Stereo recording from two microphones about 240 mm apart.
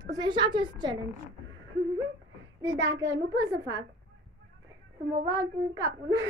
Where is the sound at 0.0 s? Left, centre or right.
Centre.